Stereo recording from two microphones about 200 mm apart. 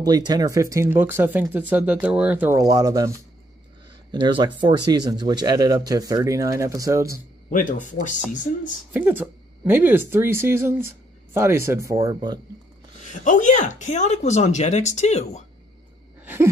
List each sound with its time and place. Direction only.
0.0 s speech: 20° right (ahead or behind)
7.4 s speech: 40° left (ahead or behind)
8.9 s speech: 10° right (ahead or behind)
13.2 s speech: 40° left (ahead or behind)